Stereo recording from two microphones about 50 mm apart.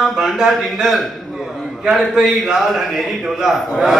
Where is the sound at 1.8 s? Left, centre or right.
Centre.